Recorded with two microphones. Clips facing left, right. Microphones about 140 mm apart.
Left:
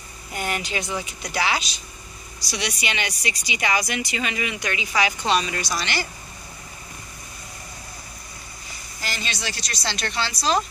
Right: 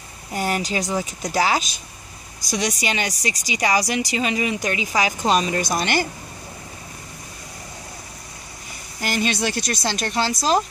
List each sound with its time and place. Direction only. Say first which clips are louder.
0.3 s speech: right 4 dB; 35° right (ahead or behind)
9.0 s speech: right 9 dB; 50° right (ahead or behind)